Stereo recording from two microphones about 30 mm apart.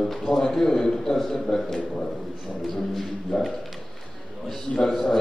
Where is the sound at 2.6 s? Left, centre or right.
Centre.